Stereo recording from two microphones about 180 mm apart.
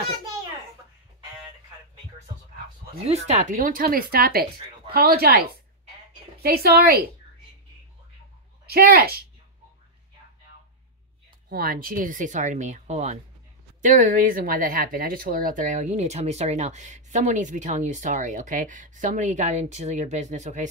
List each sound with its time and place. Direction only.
3.1 s speech: 40° right (ahead or behind); by 5.4 s 55° right (ahead or behind)
6.4 s speech: 60° right (ahead or behind)
8.6 s speech: 55° right (ahead or behind)
11.4 s speech: 55° right (ahead or behind)